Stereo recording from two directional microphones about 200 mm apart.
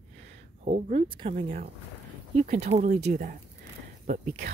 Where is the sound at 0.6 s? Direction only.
30° right (ahead or behind).